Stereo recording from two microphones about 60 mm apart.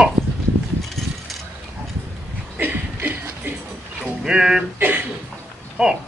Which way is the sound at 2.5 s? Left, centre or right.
Right.